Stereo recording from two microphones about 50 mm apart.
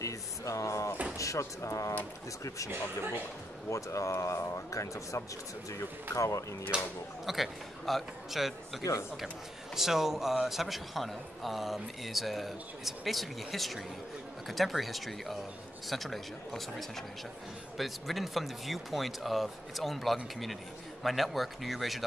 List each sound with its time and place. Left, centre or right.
0.1 s a sound: left
1.1 s speech: left
3.7 s speech: left
6.7 s speech: centre
7.2 s a man's voice: centre